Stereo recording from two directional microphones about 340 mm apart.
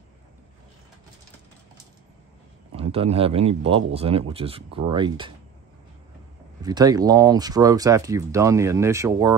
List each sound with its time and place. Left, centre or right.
2.7 s speech: centre
6.6 s speech: centre